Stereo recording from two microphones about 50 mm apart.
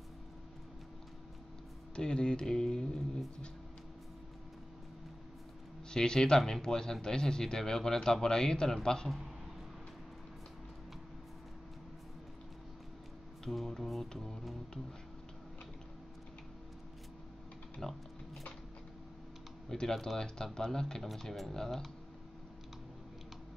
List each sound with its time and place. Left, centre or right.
2.0 s speech: centre
5.9 s speech: centre
13.5 s music: centre
17.8 s speech: centre
19.7 s speech: centre